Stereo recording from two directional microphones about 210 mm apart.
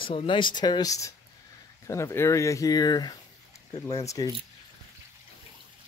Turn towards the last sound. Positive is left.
turn(degrees=15)  # may be behind; listen again after turning